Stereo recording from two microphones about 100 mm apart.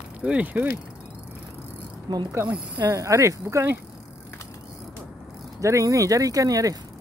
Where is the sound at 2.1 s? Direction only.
50° right (ahead or behind).